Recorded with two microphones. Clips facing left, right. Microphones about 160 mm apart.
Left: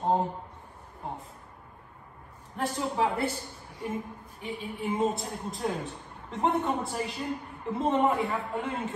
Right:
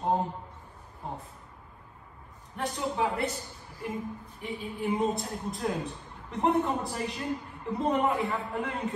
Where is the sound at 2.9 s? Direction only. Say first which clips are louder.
Left 2 dB; 30° left (ahead or behind).